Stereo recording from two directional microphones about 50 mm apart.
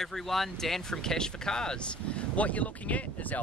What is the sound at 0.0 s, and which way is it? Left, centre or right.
Speech, centre.